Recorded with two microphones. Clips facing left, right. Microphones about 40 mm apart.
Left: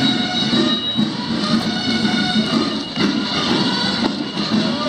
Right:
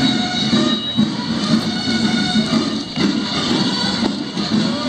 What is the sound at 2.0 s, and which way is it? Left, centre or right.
Music, centre.